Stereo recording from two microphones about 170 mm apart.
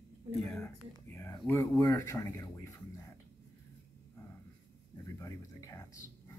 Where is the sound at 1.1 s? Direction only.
15° left (ahead or behind).